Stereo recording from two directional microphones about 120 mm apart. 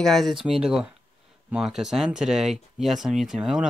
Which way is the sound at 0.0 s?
Centre (ahead or behind).